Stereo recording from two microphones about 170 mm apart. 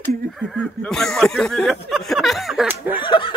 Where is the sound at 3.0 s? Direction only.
30° left (ahead or behind).